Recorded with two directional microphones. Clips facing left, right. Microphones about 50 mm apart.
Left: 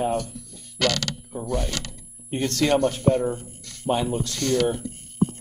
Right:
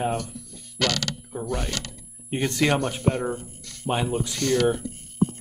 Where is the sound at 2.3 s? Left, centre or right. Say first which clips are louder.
Left 1 dB; centre.